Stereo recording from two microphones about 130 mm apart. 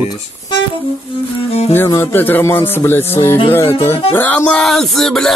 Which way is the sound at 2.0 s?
15° left (ahead or behind).